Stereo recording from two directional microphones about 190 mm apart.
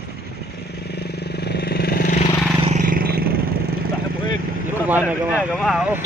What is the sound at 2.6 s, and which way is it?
Vehicle, 45° right (ahead or behind).